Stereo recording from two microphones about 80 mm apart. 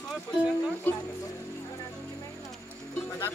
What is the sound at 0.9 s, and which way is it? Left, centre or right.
Music, left.